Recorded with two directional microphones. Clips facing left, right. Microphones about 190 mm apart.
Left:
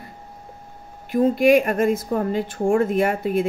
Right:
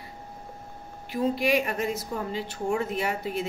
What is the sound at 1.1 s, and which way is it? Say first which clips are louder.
A woman's voice: left 9 dB; 50° left (ahead or behind).